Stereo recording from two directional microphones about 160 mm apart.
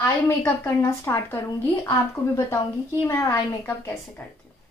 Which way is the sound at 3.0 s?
20° left (ahead or behind).